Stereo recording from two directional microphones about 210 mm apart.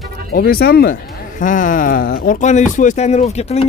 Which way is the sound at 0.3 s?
45° left (ahead or behind).